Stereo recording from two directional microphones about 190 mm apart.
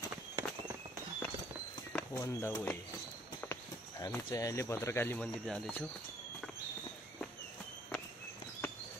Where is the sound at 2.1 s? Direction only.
15° left (ahead or behind).